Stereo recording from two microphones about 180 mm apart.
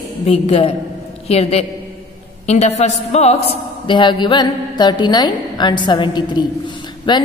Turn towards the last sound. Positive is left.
turn(degrees=25)  # may be behind; listen again after turning